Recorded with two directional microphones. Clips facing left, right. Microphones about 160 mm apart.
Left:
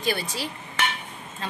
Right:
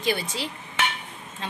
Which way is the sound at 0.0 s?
20° right (ahead or behind).